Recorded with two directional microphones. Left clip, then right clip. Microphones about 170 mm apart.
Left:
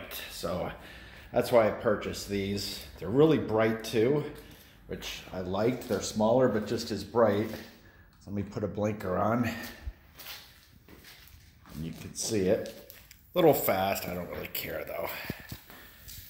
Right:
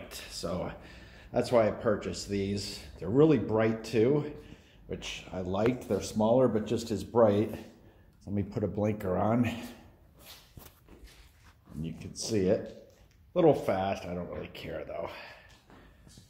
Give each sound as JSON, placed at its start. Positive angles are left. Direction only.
{"t": 0.1, "sound": "speech", "side_deg": -5}
{"t": 8.4, "sound": "speech", "side_deg": -25}
{"t": 11.8, "sound": "speech", "side_deg": -5}